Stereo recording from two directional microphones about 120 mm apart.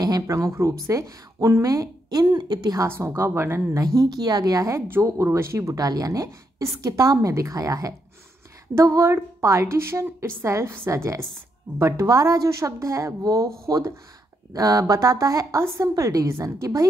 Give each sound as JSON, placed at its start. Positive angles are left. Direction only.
{"t": 0.0, "sound": "speech", "side_deg": -30}
{"t": 2.9, "sound": "speech", "side_deg": -20}